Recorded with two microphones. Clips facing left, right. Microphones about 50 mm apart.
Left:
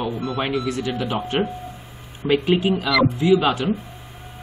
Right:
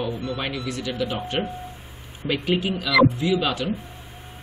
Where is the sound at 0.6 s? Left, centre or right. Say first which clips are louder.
Left 3 dB; left.